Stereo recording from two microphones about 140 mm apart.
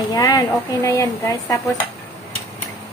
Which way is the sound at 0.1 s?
25° left (ahead or behind).